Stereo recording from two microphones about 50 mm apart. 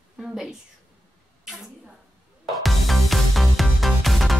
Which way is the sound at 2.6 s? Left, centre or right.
Centre.